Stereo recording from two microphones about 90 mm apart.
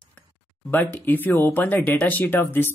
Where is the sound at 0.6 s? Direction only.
20° left (ahead or behind).